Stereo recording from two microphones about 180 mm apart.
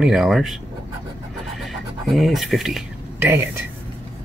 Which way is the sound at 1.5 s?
Centre (ahead or behind).